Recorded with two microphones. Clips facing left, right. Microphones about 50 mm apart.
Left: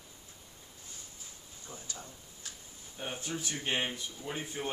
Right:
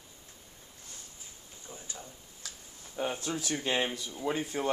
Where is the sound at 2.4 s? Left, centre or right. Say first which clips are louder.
Right 2 dB; right.